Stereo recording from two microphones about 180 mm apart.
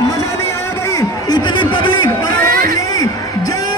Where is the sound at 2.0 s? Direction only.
25° left (ahead or behind).